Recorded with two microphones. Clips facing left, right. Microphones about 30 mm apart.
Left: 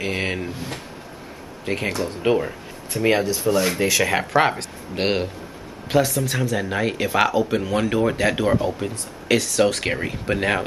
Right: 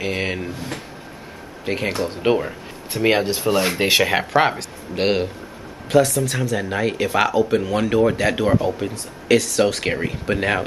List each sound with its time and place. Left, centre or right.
0.0 s speech: centre
1.9 s speech: right
3.3 s speech: right
3.5 s speech: right
4.0 s speech: centre